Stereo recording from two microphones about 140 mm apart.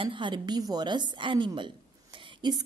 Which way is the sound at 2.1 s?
30° right (ahead or behind).